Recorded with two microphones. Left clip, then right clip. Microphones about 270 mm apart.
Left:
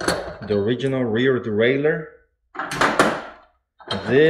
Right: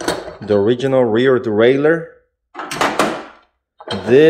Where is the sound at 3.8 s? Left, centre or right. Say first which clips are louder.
Right 6 dB; centre.